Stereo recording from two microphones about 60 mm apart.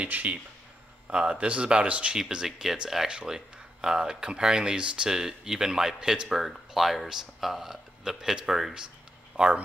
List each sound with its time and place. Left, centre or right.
0.0 s speech: right
2.1 s speech: centre
9.3 s speech: right